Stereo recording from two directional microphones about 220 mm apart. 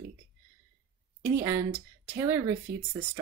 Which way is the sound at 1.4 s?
10° right (ahead or behind).